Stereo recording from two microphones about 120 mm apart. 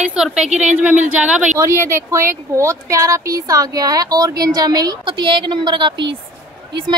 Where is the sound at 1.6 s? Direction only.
25° right (ahead or behind).